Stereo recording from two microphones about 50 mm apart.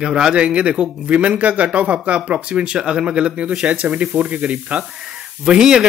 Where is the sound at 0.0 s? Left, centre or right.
Centre.